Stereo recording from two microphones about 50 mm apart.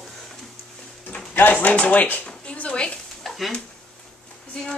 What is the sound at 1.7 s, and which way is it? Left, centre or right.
Speech, left.